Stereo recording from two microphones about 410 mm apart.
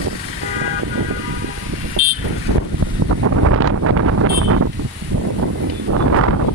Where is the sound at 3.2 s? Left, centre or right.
Right.